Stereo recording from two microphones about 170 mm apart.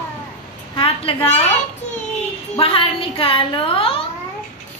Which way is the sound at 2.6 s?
30° left (ahead or behind).